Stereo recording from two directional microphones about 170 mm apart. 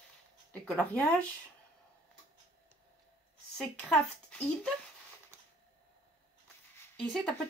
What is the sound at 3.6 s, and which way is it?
A woman's voice, 5° left (ahead or behind).